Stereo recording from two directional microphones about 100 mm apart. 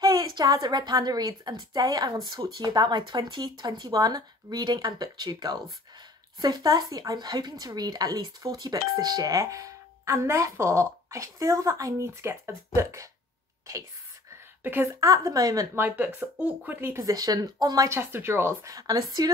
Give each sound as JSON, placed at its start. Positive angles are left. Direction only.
{"t": 0.0, "sound": "speech", "side_deg": -40}
{"t": 14.6, "sound": "a woman's voice", "side_deg": -20}
{"t": 14.9, "sound": "speech", "side_deg": -35}
{"t": 15.7, "sound": "speech", "side_deg": -20}
{"t": 17.0, "sound": "speech", "side_deg": -40}
{"t": 17.8, "sound": "speech", "side_deg": -25}